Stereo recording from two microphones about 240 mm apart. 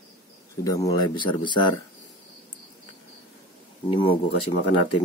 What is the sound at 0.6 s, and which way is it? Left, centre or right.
Speech, centre.